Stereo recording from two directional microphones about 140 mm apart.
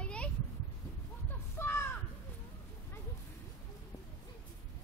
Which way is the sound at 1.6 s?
15° left (ahead or behind).